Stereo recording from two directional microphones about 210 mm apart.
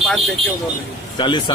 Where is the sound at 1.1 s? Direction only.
20° left (ahead or behind).